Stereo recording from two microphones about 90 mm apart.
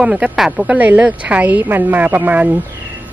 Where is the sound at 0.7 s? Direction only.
20° right (ahead or behind).